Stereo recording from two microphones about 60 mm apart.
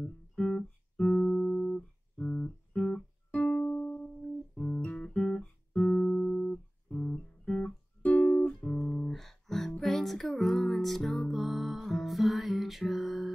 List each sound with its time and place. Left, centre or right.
0.0 s guitar: centre
2.9 s music: centre
5.0 s guitar: centre
8.5 s music: centre
9.1 s music: centre